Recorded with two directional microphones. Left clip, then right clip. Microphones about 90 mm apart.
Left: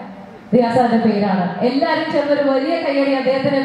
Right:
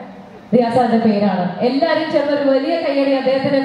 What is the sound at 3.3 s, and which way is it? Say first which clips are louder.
Speech: right 1 dB; 40° right (ahead or behind).